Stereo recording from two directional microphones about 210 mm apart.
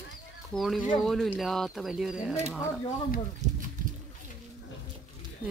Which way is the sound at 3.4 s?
35° right (ahead or behind).